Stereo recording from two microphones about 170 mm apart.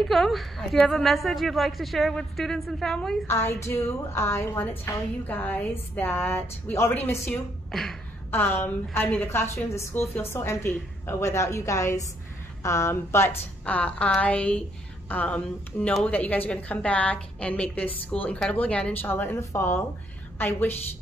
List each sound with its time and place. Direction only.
0.1 s a woman's voice: centre (ahead or behind)
3.3 s a woman's voice: 15° left (ahead or behind)
7.7 s a woman's voice: centre (ahead or behind)